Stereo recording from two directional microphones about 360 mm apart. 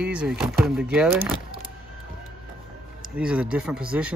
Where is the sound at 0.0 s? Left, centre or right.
Centre.